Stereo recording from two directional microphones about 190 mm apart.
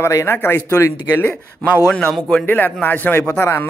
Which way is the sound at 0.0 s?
15° left (ahead or behind).